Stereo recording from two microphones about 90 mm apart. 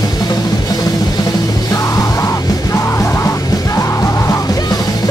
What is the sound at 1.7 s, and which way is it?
Music, 35° left (ahead or behind).